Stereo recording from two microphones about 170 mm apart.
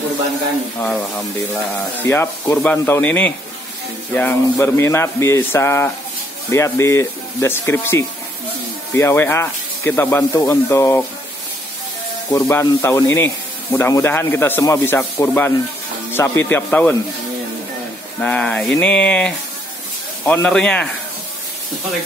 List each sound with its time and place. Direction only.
0.7 s speech: 5° left (ahead or behind)
2.0 s speech: 15° left (ahead or behind)
12.3 s speech: 15° left (ahead or behind)
18.2 s speech: 10° left (ahead or behind)